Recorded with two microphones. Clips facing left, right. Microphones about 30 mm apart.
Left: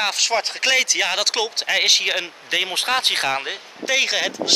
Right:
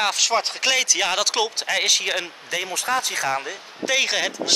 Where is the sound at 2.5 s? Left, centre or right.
Left.